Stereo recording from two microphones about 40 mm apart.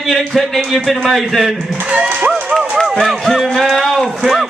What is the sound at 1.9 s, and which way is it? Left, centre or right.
Speech, right.